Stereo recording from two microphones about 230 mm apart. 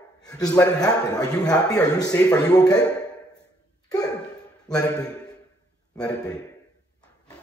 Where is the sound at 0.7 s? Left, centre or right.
Centre.